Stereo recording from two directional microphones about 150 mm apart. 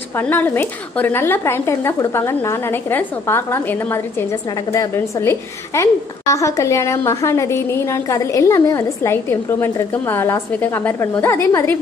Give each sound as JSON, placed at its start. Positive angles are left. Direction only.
{"t": 0.2, "sound": "speech", "side_deg": 10}